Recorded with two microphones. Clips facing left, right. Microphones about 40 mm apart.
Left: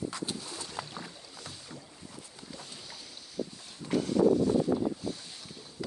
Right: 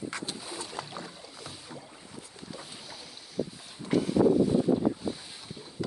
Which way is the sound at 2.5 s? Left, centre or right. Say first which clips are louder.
Right 2 dB; centre.